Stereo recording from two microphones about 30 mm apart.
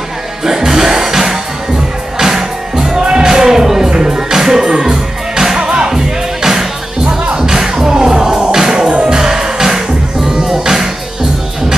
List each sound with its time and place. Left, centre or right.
0.4 s music: centre
3.0 s music: right
3.3 s music: centre
9.2 s music: centre